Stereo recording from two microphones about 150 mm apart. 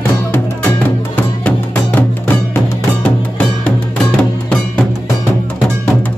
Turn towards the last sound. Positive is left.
turn(degrees=5)  # may be behind; listen again after turning